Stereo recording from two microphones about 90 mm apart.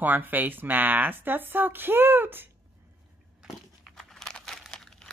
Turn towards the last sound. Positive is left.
turn(degrees=10)  # may be behind; listen again after turning